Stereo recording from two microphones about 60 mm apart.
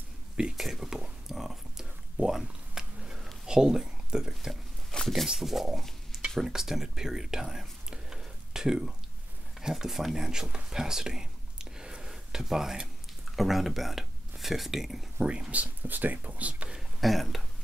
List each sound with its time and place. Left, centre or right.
0.6 s speech: centre
1.3 s a sound: centre
3.4 s speech: centre
10.7 s whispering: centre
13.4 s speech: centre
15.1 s speech: centre
17.0 s speech: centre